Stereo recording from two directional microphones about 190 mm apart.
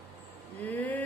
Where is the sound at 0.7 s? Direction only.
10° left (ahead or behind).